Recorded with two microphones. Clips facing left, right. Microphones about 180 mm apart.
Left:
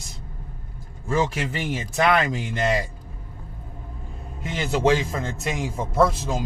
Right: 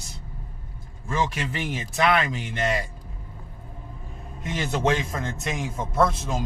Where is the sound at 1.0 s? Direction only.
35° left (ahead or behind).